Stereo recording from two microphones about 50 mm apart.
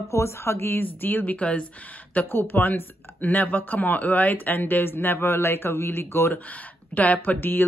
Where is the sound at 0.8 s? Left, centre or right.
Left.